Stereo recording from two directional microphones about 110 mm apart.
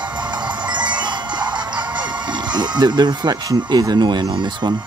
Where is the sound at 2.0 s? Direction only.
45° right (ahead or behind).